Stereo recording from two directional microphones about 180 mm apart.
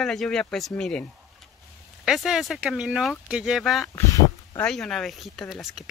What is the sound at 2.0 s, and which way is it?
Speech, centre (ahead or behind).